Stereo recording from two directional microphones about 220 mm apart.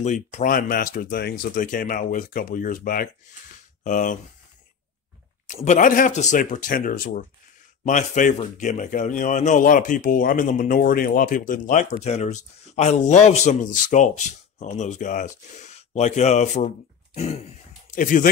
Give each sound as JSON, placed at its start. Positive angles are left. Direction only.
{"t": 0.0, "sound": "speech", "side_deg": 35}
{"t": 5.5, "sound": "speech", "side_deg": 35}